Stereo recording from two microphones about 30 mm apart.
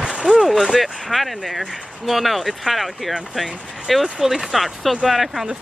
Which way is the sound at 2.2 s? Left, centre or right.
Centre.